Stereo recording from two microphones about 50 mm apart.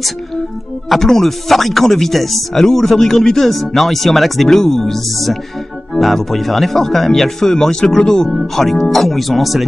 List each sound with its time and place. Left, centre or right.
0.8 s speech: centre